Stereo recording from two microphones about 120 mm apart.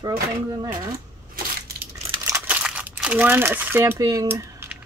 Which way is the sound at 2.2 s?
25° right (ahead or behind).